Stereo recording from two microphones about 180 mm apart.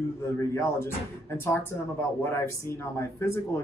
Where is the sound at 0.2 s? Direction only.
15° left (ahead or behind).